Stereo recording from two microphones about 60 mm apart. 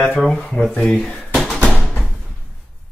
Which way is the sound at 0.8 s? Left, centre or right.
Centre.